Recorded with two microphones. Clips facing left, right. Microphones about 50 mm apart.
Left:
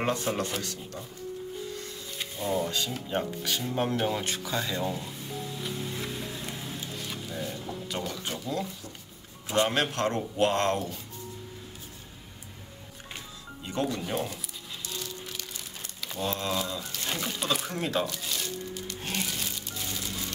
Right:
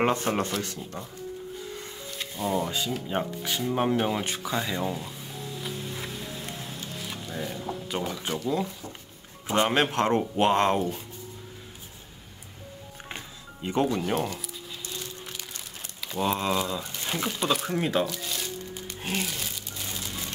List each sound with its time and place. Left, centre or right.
0.0 s speech: right
2.1 s speech: centre
5.6 s vehicle: centre
7.3 s speech: centre
13.7 s speech: right
14.1 s speech: centre
16.2 s speech: right
17.3 s speech: centre
18.0 s music: centre
19.0 s speech: centre